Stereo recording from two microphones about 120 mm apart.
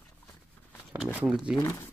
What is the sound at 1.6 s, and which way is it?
Speech, 25° left (ahead or behind).